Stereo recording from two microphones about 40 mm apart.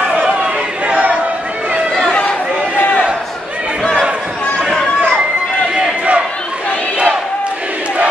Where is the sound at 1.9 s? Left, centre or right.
Centre.